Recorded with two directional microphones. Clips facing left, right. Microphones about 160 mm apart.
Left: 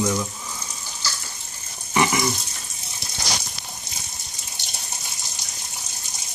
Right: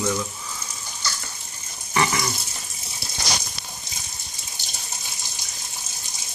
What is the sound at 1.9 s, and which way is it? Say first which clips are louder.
Water: left 2 dB; 15° left (ahead or behind).